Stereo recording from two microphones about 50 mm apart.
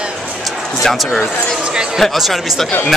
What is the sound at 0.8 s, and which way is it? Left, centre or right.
Speech, centre.